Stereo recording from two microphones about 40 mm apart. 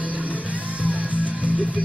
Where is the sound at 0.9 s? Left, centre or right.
Right.